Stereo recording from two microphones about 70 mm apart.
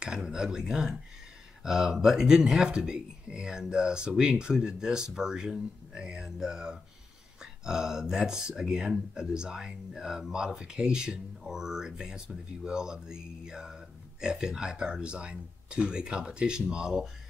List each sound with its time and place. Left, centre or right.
0.0 s speech: centre